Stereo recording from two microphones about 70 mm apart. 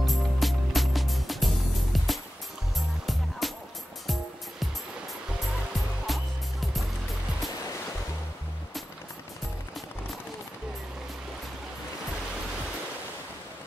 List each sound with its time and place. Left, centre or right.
0.0 s music: centre
6.0 s music: centre